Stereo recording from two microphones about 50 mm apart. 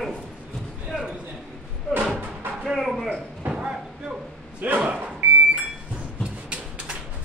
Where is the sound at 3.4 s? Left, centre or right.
Right.